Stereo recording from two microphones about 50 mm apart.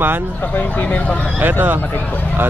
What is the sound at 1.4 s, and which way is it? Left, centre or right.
Speech, right.